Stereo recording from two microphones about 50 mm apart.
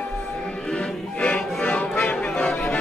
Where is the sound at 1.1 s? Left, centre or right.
Left.